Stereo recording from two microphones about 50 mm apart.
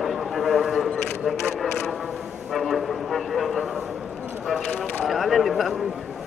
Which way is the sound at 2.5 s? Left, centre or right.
Centre.